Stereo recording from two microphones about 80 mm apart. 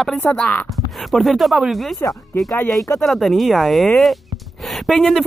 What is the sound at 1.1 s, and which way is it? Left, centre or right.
Speech, centre.